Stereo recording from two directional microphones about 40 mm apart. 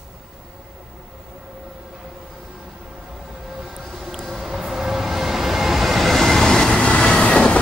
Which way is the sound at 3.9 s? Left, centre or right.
Centre.